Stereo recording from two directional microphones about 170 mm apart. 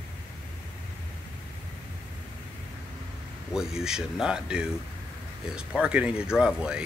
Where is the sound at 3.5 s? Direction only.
5° right (ahead or behind).